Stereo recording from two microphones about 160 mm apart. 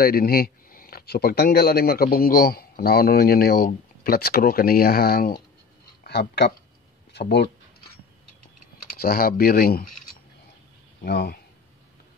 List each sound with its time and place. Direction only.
0.0 s speech: 70° left (ahead or behind)
6.0 s speech: 90° left
8.9 s speech: 70° left (ahead or behind)
11.1 s speech: 90° left